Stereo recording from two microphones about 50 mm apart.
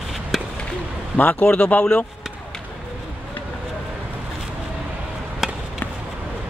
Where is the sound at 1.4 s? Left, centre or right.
Centre.